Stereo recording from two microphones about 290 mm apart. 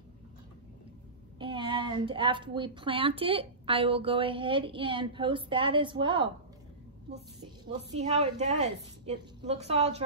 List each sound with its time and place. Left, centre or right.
1.4 s a woman's voice: centre
7.9 s a woman's voice: right